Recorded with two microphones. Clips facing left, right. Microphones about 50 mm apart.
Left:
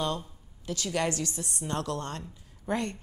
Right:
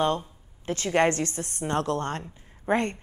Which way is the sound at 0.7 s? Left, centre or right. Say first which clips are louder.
Right 7 dB; right.